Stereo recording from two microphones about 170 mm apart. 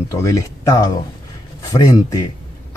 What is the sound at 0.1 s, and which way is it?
Speech, 20° left (ahead or behind).